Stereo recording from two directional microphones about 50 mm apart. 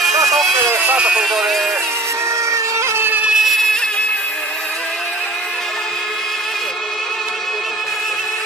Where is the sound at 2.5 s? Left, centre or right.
Right.